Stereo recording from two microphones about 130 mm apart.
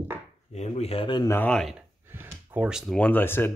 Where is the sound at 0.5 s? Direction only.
55° left (ahead or behind).